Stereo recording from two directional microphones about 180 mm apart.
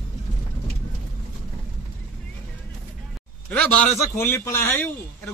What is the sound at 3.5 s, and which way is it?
A man's voice, 10° left (ahead or behind).